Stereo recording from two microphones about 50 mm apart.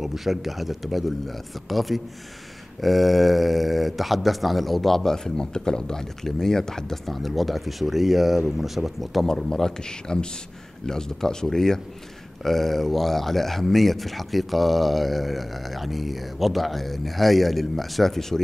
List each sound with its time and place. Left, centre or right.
0.0 s speech: centre